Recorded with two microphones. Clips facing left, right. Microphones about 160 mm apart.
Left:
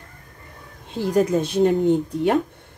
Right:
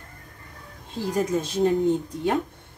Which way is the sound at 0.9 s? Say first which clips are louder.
Left 5 dB; 65° left (ahead or behind).